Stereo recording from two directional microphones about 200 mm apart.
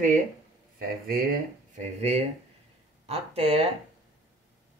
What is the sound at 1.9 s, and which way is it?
Speech, 35° right (ahead or behind).